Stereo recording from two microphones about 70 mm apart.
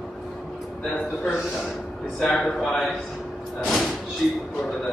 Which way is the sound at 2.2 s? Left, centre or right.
Centre.